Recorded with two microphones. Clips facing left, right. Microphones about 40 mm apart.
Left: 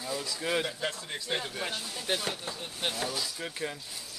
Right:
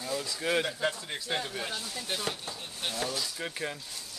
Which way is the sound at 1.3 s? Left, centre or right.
Centre.